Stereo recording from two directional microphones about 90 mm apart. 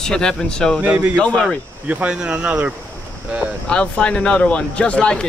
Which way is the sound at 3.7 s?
10° left (ahead or behind).